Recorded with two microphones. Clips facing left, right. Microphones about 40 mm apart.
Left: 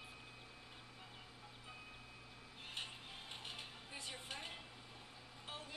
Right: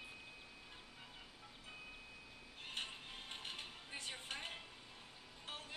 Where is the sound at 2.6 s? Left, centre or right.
Centre.